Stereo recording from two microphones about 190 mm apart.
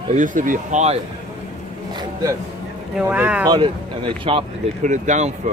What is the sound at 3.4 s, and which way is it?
Speech, 25° right (ahead or behind).